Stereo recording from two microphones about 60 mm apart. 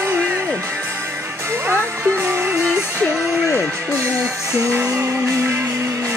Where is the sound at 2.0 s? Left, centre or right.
Right.